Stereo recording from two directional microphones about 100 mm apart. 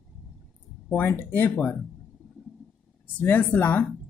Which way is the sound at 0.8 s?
20° left (ahead or behind).